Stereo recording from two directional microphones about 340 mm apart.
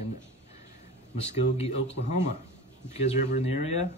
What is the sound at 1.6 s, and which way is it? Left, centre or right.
Speech, centre.